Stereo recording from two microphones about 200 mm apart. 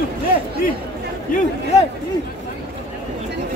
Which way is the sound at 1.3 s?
40° left (ahead or behind).